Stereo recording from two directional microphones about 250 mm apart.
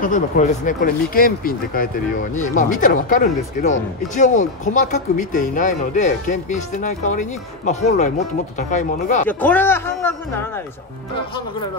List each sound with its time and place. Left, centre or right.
0.0 s speech: left
9.3 s speech: centre